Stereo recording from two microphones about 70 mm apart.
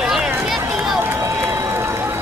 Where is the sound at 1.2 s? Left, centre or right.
Right.